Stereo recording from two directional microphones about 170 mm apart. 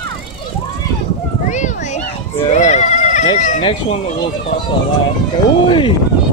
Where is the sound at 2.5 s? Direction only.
40° left (ahead or behind).